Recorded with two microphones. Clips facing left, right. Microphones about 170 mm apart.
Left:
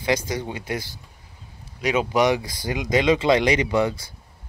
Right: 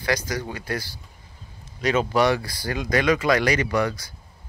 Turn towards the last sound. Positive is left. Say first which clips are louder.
# left 2 dB
turn(degrees=20)  # may be behind; listen again after turning